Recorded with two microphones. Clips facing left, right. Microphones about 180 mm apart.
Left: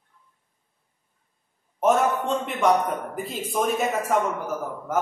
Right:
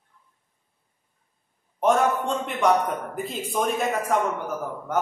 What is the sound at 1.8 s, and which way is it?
A man's voice, centre (ahead or behind).